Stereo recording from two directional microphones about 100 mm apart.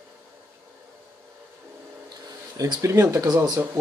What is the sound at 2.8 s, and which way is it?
Speech, 30° right (ahead or behind).